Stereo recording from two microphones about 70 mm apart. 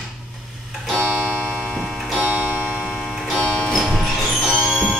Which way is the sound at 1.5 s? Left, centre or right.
Centre.